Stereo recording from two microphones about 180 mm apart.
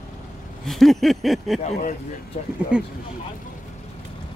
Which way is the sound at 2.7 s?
5° right (ahead or behind).